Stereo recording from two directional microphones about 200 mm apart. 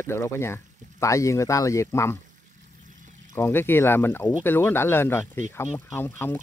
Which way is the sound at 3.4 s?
10° left (ahead or behind).